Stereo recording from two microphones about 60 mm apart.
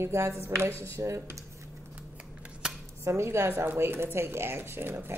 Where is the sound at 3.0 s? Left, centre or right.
Right.